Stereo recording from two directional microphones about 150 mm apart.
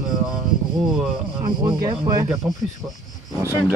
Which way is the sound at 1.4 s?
25° right (ahead or behind).